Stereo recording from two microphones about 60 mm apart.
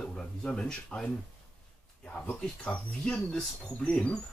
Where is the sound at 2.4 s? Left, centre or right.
Centre.